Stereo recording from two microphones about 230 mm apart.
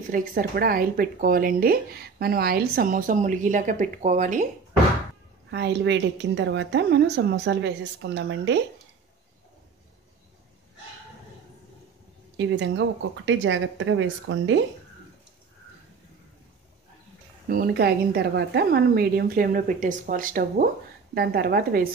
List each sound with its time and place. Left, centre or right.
0.1 s speech: right
5.5 s a woman's voice: right
12.4 s speech: right
17.5 s speech: right